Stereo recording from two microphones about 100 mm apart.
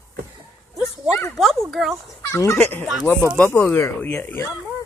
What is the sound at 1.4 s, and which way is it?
Speech, centre (ahead or behind).